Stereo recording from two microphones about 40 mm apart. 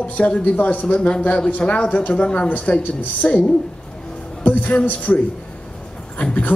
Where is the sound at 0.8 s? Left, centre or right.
Left.